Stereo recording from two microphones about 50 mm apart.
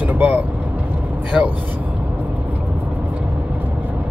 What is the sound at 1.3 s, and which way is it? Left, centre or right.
Speech, centre.